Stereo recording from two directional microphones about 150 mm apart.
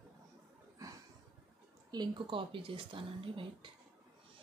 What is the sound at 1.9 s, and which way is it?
Speech, 30° right (ahead or behind).